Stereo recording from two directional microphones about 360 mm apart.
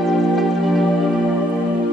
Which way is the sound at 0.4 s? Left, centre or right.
Centre.